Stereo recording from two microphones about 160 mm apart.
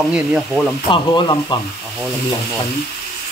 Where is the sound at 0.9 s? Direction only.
25° left (ahead or behind).